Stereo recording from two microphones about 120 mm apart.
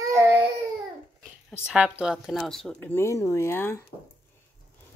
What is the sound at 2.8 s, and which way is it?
Speech, 20° left (ahead or behind).